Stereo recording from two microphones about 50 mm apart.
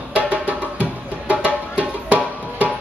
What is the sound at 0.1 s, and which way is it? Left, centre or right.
Music, right.